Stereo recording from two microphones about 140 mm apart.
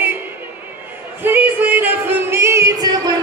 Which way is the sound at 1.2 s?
15° right (ahead or behind).